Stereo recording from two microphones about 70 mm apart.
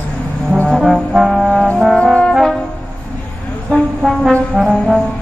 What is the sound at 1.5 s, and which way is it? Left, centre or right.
Brass instrument, centre.